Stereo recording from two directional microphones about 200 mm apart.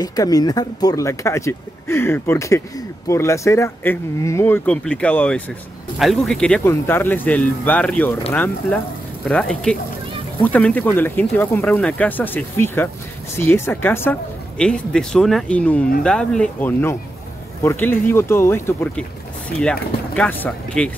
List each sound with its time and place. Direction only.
0.0 s speech: 20° left (ahead or behind)